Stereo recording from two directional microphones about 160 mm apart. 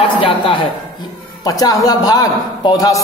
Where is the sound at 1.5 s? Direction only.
20° left (ahead or behind).